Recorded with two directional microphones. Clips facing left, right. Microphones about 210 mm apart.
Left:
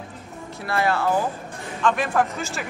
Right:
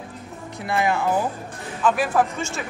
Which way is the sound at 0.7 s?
15° right (ahead or behind).